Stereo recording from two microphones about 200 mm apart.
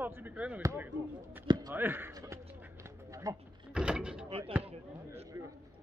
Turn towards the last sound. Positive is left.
turn(degrees=-15)  # may be behind; listen again after turning